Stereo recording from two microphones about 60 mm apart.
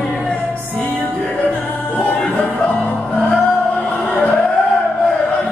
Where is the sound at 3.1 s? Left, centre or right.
Left.